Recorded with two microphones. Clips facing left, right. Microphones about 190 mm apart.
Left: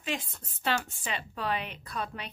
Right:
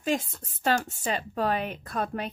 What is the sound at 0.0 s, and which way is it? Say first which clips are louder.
A woman's voice: right 7 dB; 45° right (ahead or behind).